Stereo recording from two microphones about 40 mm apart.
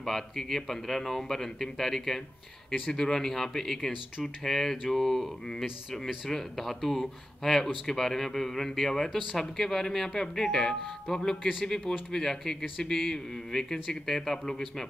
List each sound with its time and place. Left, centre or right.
0.0 s speech: centre